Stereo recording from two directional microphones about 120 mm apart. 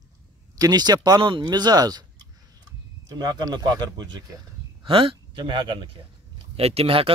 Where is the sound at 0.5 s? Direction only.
35° right (ahead or behind).